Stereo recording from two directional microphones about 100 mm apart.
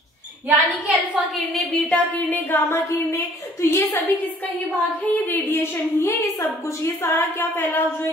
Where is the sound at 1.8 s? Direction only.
10° left (ahead or behind).